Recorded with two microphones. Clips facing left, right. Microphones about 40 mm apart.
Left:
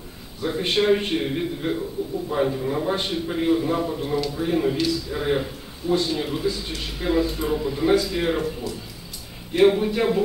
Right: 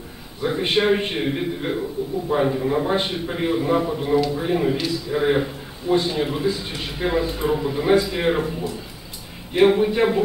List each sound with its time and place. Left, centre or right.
0.4 s a man's voice: centre